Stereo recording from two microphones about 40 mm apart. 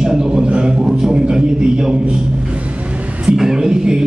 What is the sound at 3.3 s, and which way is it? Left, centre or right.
Speech, centre.